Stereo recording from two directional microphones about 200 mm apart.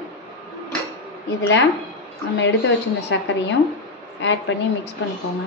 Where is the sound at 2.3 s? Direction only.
65° left (ahead or behind).